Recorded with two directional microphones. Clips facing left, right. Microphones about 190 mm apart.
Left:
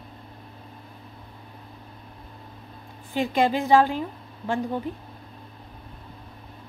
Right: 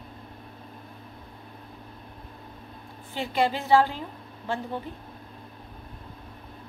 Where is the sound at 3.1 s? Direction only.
15° left (ahead or behind).